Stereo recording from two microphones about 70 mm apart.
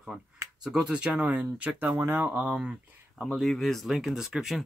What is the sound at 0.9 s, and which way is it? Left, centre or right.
Speech, centre.